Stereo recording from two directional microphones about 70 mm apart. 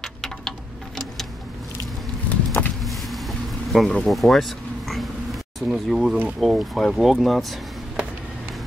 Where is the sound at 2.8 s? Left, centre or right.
Centre.